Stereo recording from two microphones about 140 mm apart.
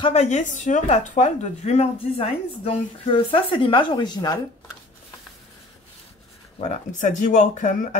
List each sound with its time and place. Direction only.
0.1 s speech: 55° left (ahead or behind); by 4.4 s 30° left (ahead or behind)
6.6 s speech: 60° left (ahead or behind)